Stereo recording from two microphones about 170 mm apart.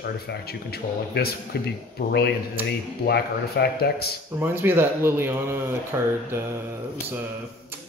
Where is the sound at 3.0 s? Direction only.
70° left (ahead or behind).